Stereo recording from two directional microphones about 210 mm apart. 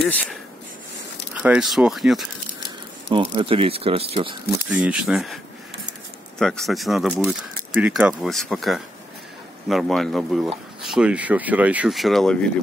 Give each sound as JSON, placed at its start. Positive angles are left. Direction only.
{"t": 1.3, "sound": "speech", "side_deg": -5}
{"t": 3.1, "sound": "speech", "side_deg": -25}
{"t": 4.6, "sound": "speech", "side_deg": -5}